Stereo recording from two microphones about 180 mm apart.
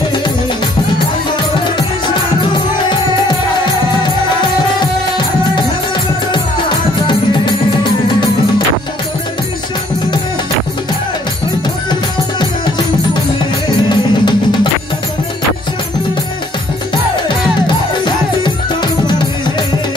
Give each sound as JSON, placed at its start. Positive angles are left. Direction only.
{"t": 11.9, "sound": "music", "side_deg": 25}
{"t": 17.6, "sound": "music", "side_deg": 25}